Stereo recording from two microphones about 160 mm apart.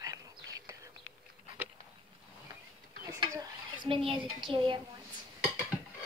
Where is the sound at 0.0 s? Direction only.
20° right (ahead or behind).